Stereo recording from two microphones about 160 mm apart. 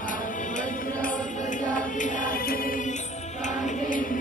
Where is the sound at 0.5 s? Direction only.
50° left (ahead or behind).